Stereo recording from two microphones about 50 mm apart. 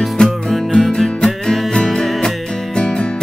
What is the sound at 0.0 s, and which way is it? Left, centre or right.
Music, centre.